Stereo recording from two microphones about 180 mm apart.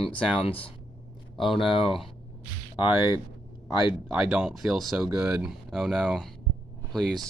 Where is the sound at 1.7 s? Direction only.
30° left (ahead or behind).